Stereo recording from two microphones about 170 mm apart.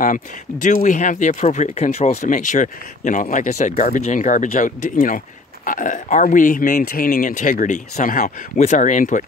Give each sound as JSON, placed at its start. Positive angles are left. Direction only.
{"t": 0.0, "sound": "speech", "side_deg": 50}